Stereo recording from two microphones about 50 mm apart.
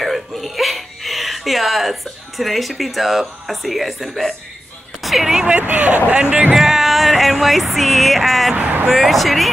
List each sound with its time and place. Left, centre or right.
0.0 s a sound: centre
5.0 s music: centre
5.5 s speech: right
6.5 s music: centre
8.5 s a sound: right
8.8 s music: centre